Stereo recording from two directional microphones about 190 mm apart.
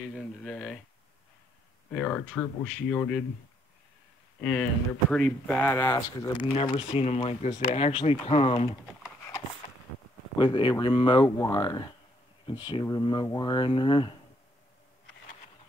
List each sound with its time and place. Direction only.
0.1 s speech: 5° left (ahead or behind)
1.9 s speech: 5° left (ahead or behind)
4.4 s speech: centre (ahead or behind)
5.8 s speech: 15° left (ahead or behind)
10.3 s speech: 25° left (ahead or behind)